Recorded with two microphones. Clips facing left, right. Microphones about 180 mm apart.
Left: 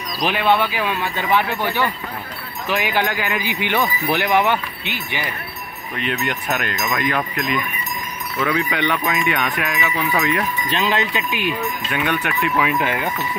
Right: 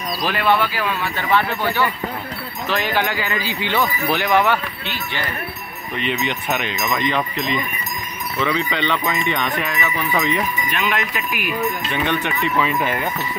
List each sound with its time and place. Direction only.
0.2 s speech: 15° left (ahead or behind)
5.9 s speech: 5° left (ahead or behind)
10.7 s speech: 30° left (ahead or behind)
11.9 s speech: 10° left (ahead or behind)